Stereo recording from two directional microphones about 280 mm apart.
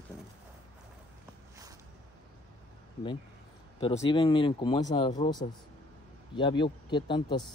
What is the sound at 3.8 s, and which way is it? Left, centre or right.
Speech, centre.